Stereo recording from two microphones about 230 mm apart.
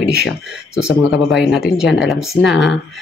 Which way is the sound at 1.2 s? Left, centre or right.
Centre.